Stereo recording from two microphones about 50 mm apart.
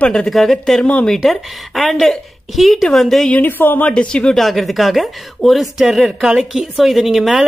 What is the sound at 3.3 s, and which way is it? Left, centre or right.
Speech, left.